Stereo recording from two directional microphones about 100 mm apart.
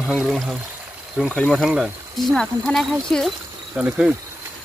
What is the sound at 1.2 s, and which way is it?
Speech, 5° left (ahead or behind).